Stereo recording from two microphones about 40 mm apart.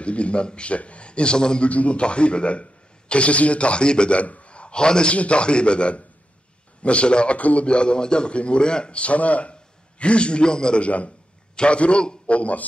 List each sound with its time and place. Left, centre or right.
0.0 s a man's voice: left
1.7 s a man's voice: left
4.2 s a man's voice: left
7.3 s a man's voice: left
7.6 s a man's voice: left
10.8 s a man's voice: left